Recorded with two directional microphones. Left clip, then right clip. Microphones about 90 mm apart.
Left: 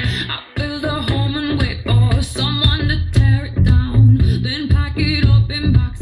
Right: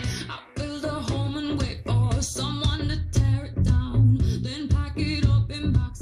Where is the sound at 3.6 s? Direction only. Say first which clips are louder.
Left 8 dB; 10° right (ahead or behind).